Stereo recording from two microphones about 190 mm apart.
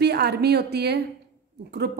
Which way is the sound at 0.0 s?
60° right (ahead or behind).